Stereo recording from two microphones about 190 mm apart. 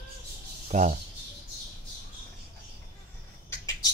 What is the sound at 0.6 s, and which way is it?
Speech, 40° right (ahead or behind).